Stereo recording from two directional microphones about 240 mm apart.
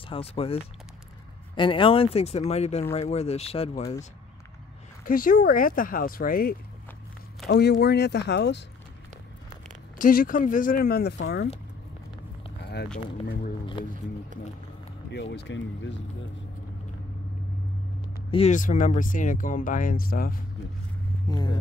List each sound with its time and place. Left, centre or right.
0.1 s speech: left
5.0 s speech: left
9.9 s speech: left
15.0 s speech: left
18.3 s speech: left
21.3 s speech: centre